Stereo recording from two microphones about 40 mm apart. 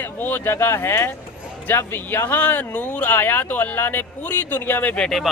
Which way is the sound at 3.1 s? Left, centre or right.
Left.